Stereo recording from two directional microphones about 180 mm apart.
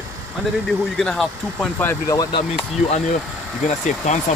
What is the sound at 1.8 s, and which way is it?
Speech, 15° left (ahead or behind).